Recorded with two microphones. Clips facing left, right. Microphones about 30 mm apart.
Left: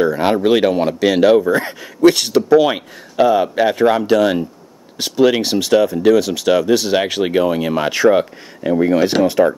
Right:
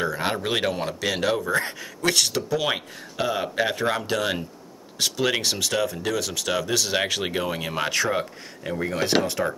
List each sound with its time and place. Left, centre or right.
0.0 s speech: centre
1.5 s speech: centre